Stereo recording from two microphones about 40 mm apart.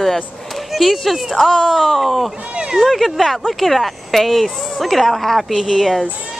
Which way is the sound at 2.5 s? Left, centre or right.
Centre.